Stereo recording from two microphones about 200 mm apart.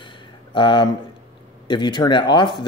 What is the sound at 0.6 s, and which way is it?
Speech, 25° left (ahead or behind).